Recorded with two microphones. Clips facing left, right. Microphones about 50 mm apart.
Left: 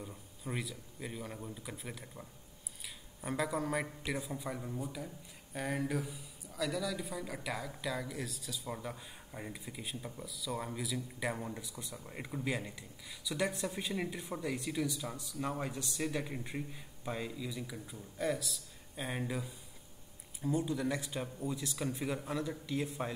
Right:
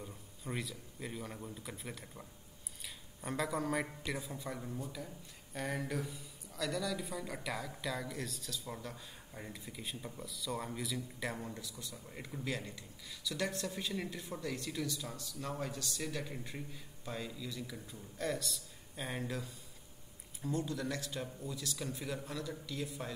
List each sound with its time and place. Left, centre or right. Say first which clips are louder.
0.0 s a man's voice: left 2 dB; centre; by 23.1 s left